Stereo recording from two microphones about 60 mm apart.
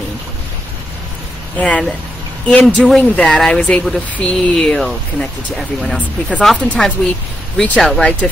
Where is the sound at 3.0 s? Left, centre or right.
Centre.